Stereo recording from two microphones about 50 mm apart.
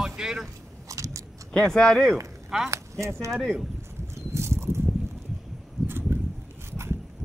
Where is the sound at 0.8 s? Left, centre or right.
Right.